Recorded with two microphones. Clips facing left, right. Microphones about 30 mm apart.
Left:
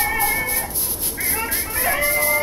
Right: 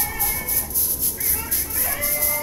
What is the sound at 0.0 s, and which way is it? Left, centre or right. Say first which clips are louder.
Cat: left 8 dB; left.